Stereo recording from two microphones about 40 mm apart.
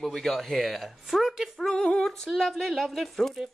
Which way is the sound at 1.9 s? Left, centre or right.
Centre.